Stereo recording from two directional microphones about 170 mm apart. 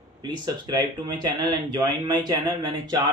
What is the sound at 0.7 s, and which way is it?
Speech, 25° right (ahead or behind).